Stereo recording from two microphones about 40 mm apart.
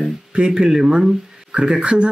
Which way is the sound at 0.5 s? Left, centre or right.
Centre.